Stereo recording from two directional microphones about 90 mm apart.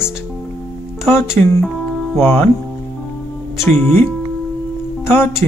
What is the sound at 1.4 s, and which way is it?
Speech, 20° left (ahead or behind).